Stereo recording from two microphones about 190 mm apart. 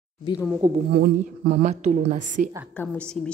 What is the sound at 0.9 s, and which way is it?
A woman's voice, 50° right (ahead or behind).